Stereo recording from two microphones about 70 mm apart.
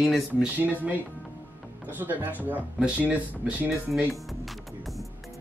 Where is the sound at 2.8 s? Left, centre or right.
Centre.